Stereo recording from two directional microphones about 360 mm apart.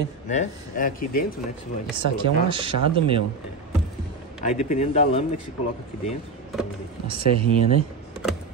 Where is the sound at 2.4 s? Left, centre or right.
Centre.